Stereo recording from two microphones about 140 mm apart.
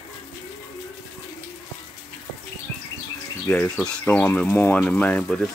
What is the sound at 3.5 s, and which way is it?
Speech, 10° left (ahead or behind).